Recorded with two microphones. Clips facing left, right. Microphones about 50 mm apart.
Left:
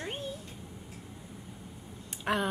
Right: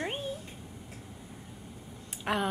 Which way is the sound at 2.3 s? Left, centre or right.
Centre.